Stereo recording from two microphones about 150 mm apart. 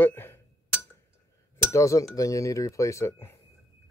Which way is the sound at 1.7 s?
20° left (ahead or behind).